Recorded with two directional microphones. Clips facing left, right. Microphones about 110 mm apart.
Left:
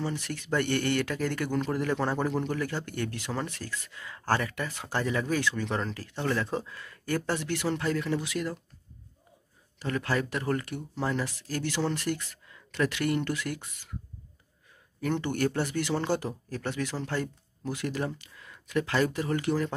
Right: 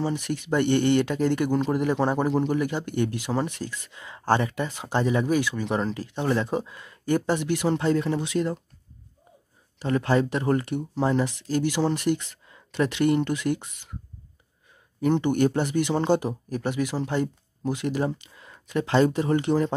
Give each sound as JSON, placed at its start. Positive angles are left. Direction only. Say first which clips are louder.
{"t": 0.0, "sound": "speech", "louder": "right 6 dB", "side_deg": -15}
{"t": 9.8, "sound": "speech", "louder": "right 7 dB", "side_deg": -25}
{"t": 15.0, "sound": "speech", "louder": "right 7 dB", "side_deg": -20}